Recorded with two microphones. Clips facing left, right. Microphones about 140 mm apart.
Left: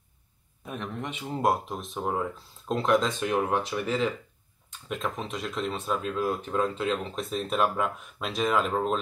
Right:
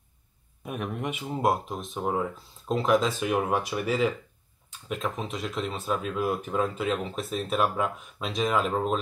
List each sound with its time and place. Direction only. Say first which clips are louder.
0.7 s speech: right 3 dB; 10° right (ahead or behind)